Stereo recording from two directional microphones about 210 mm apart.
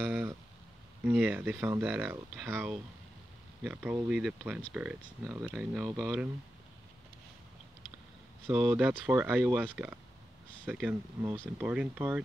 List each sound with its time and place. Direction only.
0.0 s a sound: 10° right (ahead or behind)
1.0 s speech: 5° right (ahead or behind)
8.5 s speech: 5° right (ahead or behind)